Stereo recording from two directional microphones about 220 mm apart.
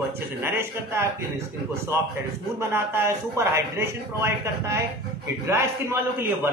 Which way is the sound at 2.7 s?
10° right (ahead or behind).